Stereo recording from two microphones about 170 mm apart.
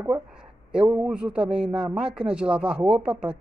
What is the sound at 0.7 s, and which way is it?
Speech, 5° right (ahead or behind).